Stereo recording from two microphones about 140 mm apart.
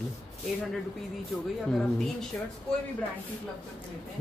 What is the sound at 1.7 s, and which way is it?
Speech, 5° left (ahead or behind).